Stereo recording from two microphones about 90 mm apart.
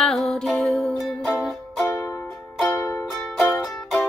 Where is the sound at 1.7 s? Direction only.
25° left (ahead or behind).